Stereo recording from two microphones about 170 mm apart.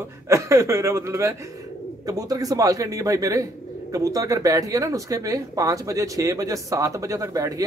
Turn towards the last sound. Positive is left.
turn(degrees=-20)  # may be behind; listen again after turning